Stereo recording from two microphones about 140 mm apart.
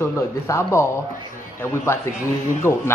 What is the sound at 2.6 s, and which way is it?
Speech, 20° left (ahead or behind).